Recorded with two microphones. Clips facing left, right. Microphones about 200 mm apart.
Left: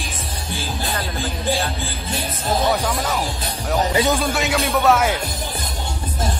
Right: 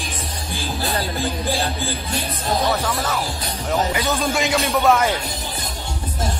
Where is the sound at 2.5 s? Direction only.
Centre (ahead or behind).